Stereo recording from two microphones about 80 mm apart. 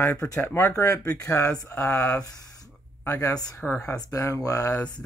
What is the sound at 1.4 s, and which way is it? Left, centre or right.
Speech, centre.